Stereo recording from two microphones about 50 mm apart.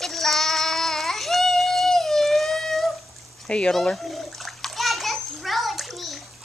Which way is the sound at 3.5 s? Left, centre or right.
Left.